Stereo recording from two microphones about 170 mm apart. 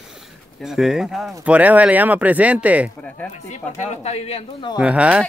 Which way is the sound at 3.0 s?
10° left (ahead or behind).